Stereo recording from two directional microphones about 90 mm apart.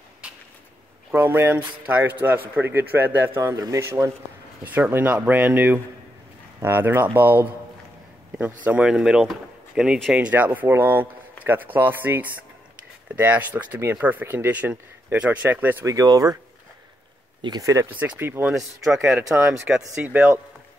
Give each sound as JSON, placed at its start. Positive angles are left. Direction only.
{"t": 1.1, "sound": "speech", "side_deg": -25}
{"t": 4.6, "sound": "speech", "side_deg": -20}
{"t": 8.7, "sound": "speech", "side_deg": -10}
{"t": 15.8, "sound": "speech", "side_deg": -40}
{"t": 17.6, "sound": "speech", "side_deg": -35}
{"t": 17.9, "sound": "speech", "side_deg": -20}
{"t": 18.4, "sound": "speech", "side_deg": -5}
{"t": 19.7, "sound": "speech", "side_deg": -15}